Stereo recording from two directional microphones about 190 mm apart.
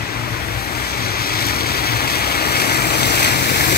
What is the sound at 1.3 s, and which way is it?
Vehicle, 55° left (ahead or behind).